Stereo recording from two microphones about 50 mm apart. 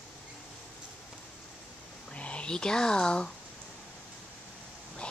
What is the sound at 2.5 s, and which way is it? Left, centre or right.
Speech, centre.